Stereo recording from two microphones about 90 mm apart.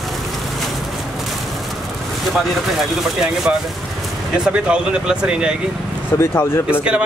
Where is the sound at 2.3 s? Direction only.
Centre (ahead or behind).